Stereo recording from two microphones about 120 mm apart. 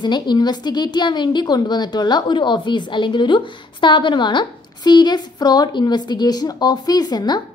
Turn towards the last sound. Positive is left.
turn(degrees=35)  # may be behind; listen again after turning